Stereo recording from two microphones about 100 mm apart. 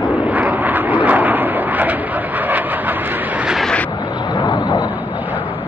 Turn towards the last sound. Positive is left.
turn(degrees=45)  # may be behind; listen again after turning